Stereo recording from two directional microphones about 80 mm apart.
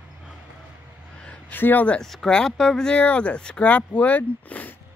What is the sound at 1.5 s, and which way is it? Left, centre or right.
Speech, left.